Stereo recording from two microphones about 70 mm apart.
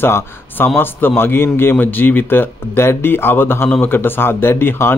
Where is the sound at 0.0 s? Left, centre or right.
Left.